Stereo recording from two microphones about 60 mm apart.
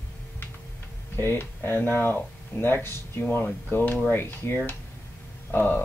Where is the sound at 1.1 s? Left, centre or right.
Left.